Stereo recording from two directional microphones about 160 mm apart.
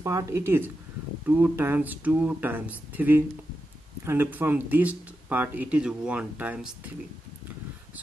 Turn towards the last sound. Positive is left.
turn(degrees=-10)  # may be behind; listen again after turning